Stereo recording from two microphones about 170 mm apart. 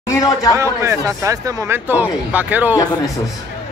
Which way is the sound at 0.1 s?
15° left (ahead or behind).